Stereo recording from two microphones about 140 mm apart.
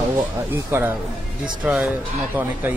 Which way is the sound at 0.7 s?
15° right (ahead or behind).